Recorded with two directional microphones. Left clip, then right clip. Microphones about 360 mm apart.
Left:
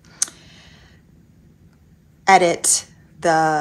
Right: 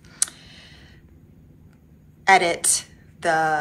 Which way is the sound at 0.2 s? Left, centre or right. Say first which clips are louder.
Left 3 dB; centre.